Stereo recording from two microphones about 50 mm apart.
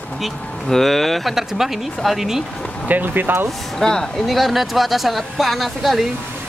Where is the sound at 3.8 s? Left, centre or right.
Centre.